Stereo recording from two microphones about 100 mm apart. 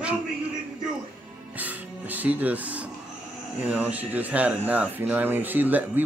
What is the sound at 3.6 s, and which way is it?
Speech, 15° right (ahead or behind).